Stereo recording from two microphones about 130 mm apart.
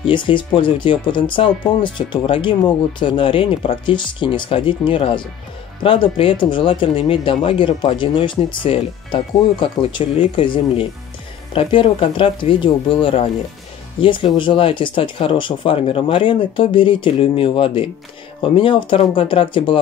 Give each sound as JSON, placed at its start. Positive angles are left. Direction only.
{"t": 0.0, "sound": "speech", "side_deg": 40}